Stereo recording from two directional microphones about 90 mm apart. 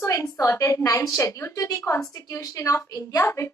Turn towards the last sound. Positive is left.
turn(degrees=35)  # may be behind; listen again after turning